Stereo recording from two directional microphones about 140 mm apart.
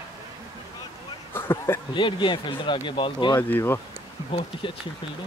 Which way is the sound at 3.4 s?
15° left (ahead or behind).